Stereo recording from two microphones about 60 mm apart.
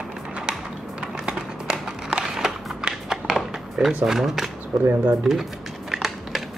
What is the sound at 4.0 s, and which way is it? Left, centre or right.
Speech, centre.